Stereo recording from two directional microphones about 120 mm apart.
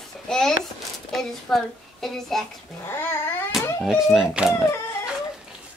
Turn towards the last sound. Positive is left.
turn(degrees=-5)  # may be behind; listen again after turning